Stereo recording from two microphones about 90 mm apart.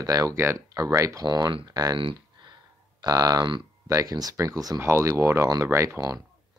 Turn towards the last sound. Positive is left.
turn(degrees=-30)  # may be behind; listen again after turning